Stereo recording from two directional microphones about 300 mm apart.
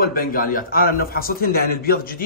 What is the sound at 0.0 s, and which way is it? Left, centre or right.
A man's voice, left.